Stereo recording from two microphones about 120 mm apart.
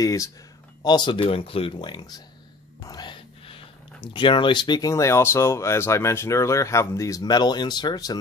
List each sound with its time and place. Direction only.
0.0 s speech: 25° left (ahead or behind)
0.8 s speech: 40° left (ahead or behind)